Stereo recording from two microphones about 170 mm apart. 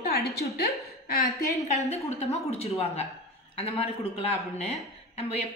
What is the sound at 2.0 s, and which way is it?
Speech, 40° left (ahead or behind).